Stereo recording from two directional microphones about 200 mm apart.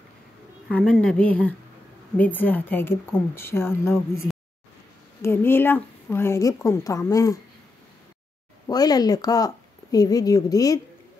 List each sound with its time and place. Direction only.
0.7 s speech: 5° left (ahead or behind)
8.6 s speech: 20° left (ahead or behind)